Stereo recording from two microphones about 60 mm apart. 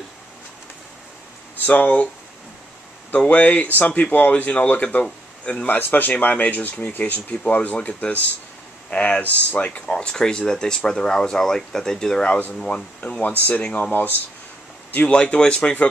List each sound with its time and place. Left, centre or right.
1.7 s speech: left
3.1 s speech: left
5.7 s speech: left
15.0 s speech: centre